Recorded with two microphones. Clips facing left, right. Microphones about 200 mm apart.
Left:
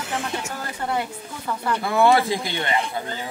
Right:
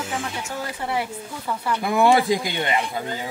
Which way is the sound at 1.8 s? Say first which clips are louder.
Even; 15° right (ahead or behind).